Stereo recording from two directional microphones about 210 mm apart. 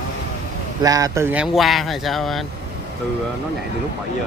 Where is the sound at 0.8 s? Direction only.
15° right (ahead or behind); by 2.4 s centre (ahead or behind).